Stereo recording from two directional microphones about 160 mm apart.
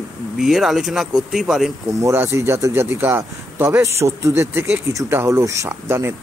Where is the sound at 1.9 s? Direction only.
15° right (ahead or behind).